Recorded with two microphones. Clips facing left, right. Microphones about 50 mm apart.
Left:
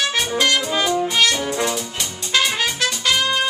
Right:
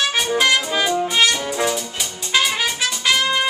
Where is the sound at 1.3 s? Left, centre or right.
Centre.